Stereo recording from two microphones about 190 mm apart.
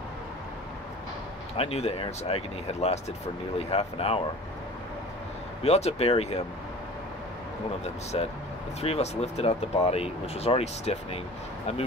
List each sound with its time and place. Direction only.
1.6 s speech: 30° left (ahead or behind)
5.6 s speech: 35° left (ahead or behind)
8.1 s speech: 30° left (ahead or behind)